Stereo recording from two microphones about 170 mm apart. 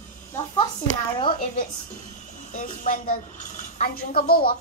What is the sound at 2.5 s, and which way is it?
A woman's voice, 50° left (ahead or behind).